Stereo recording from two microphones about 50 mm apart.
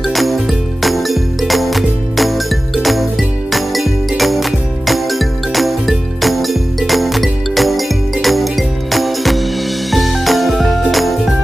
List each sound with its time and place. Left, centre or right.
0.1 s music: centre